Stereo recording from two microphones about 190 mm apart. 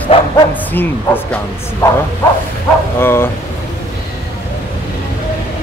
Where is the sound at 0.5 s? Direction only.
10° left (ahead or behind).